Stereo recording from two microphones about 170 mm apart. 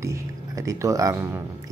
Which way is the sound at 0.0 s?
20° right (ahead or behind).